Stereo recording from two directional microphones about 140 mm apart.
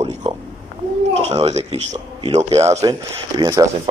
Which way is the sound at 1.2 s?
50° right (ahead or behind).